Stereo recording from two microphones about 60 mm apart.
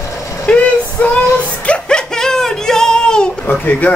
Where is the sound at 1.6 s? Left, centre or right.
Centre.